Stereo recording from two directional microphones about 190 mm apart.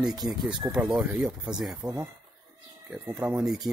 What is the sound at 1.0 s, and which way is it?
Speech, 5° right (ahead or behind).